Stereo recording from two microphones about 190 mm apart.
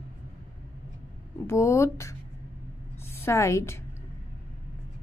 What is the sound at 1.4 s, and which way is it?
Speech, 15° left (ahead or behind).